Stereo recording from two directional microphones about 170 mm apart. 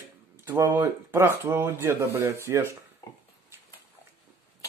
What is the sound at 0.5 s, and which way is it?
Speech, 15° right (ahead or behind).